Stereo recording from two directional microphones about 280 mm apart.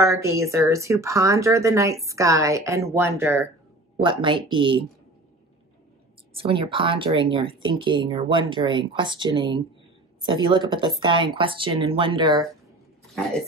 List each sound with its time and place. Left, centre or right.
0.0 s speech: centre
6.4 s speech: centre